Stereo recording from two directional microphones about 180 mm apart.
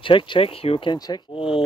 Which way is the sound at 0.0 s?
30° left (ahead or behind).